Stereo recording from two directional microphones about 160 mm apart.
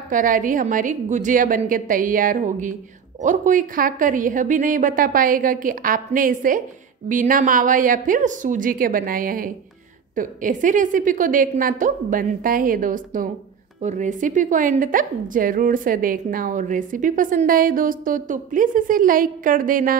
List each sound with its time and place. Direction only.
0.1 s a woman's voice: 55° right (ahead or behind)